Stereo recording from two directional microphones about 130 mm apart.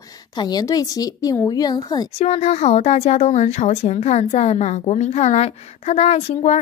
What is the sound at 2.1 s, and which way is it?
A woman's voice, 55° left (ahead or behind).